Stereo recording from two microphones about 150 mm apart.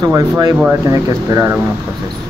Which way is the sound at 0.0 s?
25° right (ahead or behind).